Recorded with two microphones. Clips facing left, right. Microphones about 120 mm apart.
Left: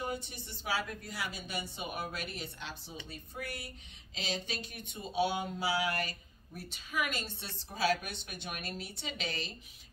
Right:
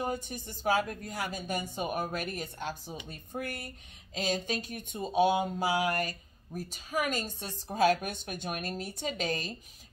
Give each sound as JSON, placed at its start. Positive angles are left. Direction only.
{"t": 0.0, "sound": "speech", "side_deg": -45}